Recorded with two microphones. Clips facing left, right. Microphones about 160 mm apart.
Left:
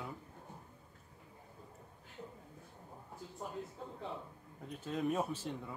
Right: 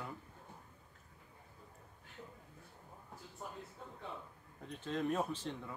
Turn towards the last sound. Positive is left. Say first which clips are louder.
# left 1 dB
turn(degrees=5)  # may be behind; listen again after turning